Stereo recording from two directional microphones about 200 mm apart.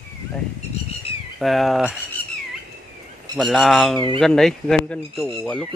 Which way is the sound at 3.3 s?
Centre (ahead or behind).